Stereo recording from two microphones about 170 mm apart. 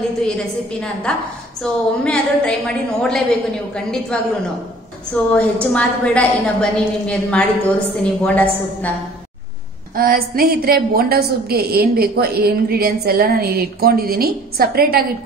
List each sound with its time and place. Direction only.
1.6 s a woman's voice: 5° left (ahead or behind)
9.9 s a woman's voice: 60° right (ahead or behind)